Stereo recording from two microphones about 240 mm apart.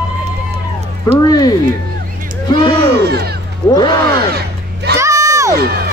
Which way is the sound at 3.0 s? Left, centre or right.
Right.